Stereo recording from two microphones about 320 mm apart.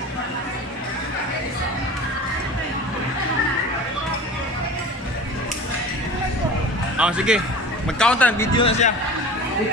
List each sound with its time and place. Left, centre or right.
7.0 s speech: centre
8.5 s a man's voice: centre